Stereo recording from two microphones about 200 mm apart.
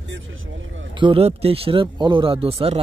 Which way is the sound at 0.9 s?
25° right (ahead or behind).